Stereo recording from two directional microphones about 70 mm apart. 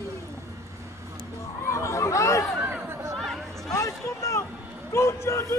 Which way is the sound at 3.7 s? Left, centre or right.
Left.